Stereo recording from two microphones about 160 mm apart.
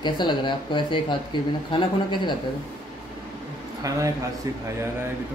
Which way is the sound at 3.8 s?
20° right (ahead or behind).